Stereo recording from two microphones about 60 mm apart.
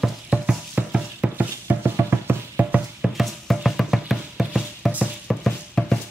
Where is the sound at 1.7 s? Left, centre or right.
Right.